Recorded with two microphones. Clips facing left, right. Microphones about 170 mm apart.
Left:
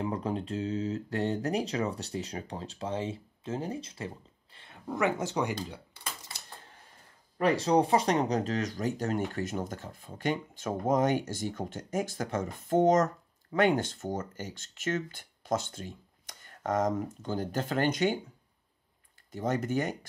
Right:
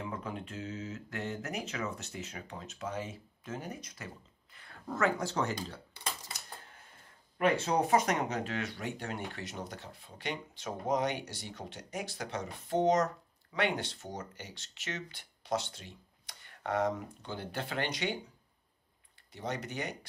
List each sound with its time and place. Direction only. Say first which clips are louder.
0.0 s speech: left 7 dB; 35° left (ahead or behind); by 5.8 s 15° left (ahead or behind)
7.3 s speech: left 4 dB; 35° left (ahead or behind)
19.3 s speech: left 8 dB; 45° left (ahead or behind)